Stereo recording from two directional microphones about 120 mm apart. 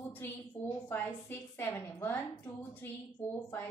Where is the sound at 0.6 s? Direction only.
15° left (ahead or behind).